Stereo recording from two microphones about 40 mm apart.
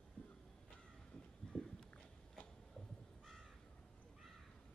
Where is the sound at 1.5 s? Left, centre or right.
Left.